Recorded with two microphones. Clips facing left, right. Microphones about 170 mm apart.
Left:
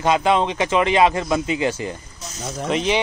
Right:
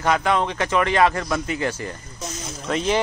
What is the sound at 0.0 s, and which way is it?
Speech, 20° left (ahead or behind).